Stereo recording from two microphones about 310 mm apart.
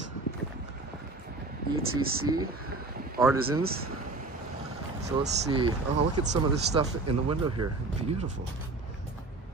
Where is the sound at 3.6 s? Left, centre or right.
Right.